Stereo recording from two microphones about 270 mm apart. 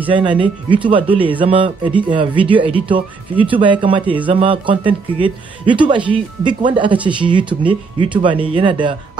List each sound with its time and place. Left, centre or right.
0.1 s speech: centre